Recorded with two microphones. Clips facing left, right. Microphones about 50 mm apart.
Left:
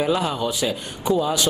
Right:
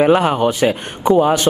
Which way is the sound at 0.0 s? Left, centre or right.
Right.